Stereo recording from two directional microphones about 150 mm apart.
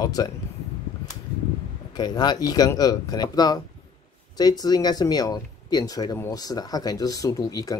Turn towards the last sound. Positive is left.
turn(degrees=25)  # may be behind; listen again after turning